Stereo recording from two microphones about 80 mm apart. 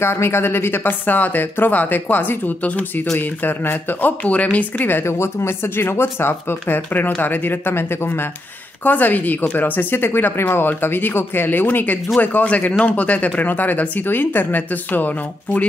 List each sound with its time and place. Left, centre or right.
0.0 s speech: left